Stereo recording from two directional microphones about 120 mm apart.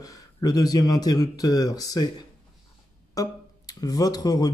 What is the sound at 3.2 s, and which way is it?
Speech, 30° left (ahead or behind).